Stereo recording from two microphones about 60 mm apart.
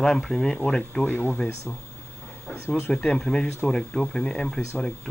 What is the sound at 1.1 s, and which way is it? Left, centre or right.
Speech, left.